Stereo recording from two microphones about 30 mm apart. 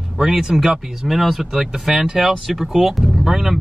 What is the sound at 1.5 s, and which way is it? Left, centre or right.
Speech, centre.